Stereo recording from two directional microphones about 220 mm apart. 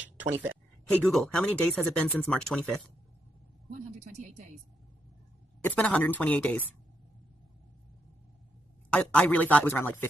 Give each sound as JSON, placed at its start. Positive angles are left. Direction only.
{"t": 0.0, "sound": "a sound", "side_deg": -5}
{"t": 1.0, "sound": "speech", "side_deg": 0}
{"t": 4.1, "sound": "speech", "side_deg": -30}
{"t": 5.7, "sound": "a man's voice", "side_deg": 5}
{"t": 8.9, "sound": "a man's voice", "side_deg": 5}